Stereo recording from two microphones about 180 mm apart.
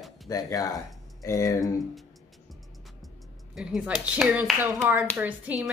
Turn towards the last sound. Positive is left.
turn(degrees=-5)  # may be behind; listen again after turning